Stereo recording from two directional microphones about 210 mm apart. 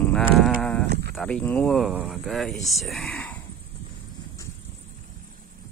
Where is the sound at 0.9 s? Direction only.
50° right (ahead or behind).